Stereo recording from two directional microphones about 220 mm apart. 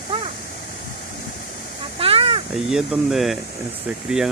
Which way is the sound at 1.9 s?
25° right (ahead or behind).